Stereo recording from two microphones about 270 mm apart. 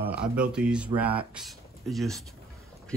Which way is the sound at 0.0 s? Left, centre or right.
Centre.